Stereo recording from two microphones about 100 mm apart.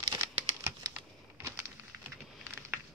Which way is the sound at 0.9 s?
20° right (ahead or behind).